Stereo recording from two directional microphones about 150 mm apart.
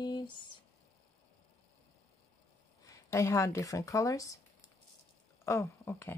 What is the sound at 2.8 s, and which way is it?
Speech, 20° left (ahead or behind).